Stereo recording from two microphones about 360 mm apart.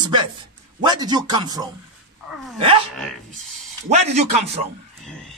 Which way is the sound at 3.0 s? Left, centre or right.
Centre.